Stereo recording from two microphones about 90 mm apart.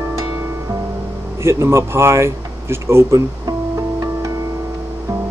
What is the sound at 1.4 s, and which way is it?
Speech, 30° right (ahead or behind).